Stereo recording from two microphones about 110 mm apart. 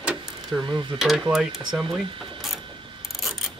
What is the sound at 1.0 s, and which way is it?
Speech, centre (ahead or behind).